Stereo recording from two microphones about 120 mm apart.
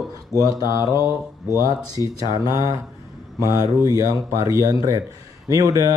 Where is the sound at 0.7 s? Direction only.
25° right (ahead or behind).